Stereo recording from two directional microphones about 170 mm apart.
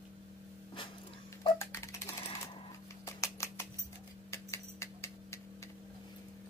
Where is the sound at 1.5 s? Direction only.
15° left (ahead or behind).